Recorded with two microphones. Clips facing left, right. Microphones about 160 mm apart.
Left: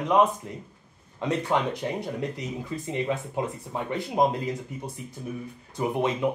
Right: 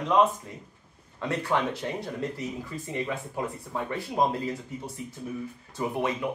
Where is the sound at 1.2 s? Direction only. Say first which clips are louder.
Left 2 dB; 20° left (ahead or behind).